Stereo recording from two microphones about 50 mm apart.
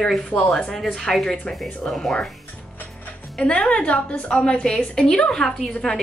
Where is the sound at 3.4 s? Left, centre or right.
Left.